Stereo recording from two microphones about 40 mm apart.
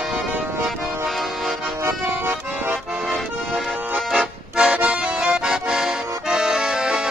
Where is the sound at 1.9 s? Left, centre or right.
Right.